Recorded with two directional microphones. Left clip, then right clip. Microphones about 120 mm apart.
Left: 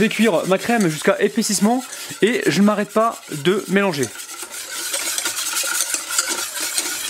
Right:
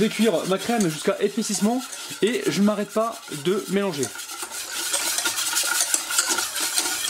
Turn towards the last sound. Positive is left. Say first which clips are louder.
# left 1 dB
turn(degrees=0)  # may be behind; listen again after turning